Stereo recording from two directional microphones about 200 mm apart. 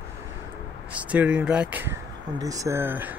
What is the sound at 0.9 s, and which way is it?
Speech, 5° right (ahead or behind).